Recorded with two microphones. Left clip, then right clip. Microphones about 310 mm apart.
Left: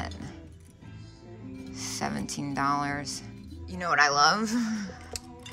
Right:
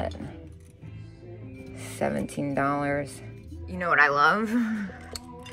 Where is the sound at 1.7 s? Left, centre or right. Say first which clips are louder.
Right 4 dB; centre.